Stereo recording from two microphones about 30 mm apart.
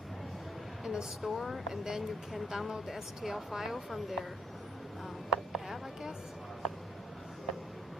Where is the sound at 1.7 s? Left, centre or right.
Centre.